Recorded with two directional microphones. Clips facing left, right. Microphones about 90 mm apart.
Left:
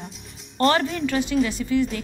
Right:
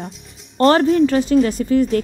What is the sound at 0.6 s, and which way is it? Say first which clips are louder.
A woman's voice: right 8 dB; 40° right (ahead or behind).